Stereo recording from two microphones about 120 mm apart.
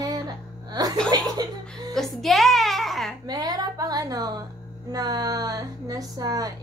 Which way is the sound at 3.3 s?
35° right (ahead or behind).